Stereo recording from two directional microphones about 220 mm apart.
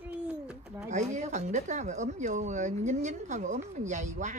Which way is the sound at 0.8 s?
35° right (ahead or behind).